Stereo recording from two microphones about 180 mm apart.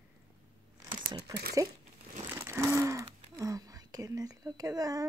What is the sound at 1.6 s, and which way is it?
Speech, 20° right (ahead or behind).